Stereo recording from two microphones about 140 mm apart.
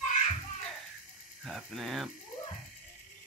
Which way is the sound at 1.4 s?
Centre (ahead or behind).